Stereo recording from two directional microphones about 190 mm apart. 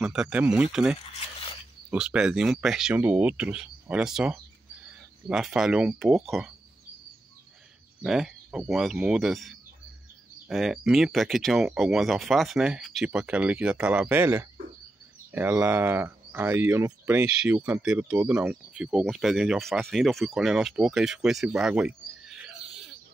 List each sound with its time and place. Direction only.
0.0 s speech: 5° right (ahead or behind)
1.2 s a sound: 30° left (ahead or behind)
1.9 s speech: 5° right (ahead or behind)
8.0 s speech: centre (ahead or behind)